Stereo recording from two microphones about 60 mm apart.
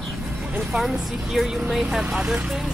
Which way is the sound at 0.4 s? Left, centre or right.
Centre.